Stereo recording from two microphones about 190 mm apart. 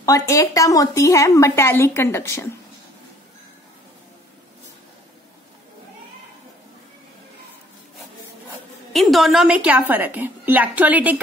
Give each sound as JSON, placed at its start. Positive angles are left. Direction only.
{"t": 0.0, "sound": "a woman's voice", "side_deg": 20}
{"t": 8.5, "sound": "a woman's voice", "side_deg": 0}